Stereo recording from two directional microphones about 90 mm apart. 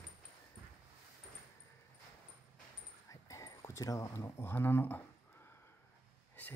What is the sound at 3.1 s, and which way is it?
Speech, 40° left (ahead or behind).